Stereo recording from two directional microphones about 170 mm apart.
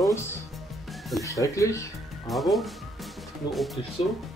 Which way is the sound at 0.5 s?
Centre (ahead or behind).